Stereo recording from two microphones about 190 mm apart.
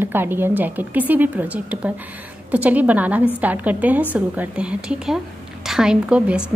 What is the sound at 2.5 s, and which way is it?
A woman's voice, 10° right (ahead or behind).